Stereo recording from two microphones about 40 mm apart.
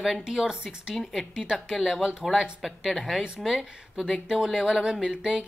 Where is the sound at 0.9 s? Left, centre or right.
Centre.